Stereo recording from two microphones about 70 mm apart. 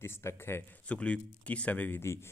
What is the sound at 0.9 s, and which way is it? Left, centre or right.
Speech, centre.